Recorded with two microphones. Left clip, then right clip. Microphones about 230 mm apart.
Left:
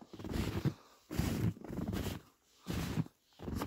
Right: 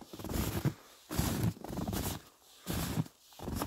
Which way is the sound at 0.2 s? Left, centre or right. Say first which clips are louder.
Right 2 dB; right.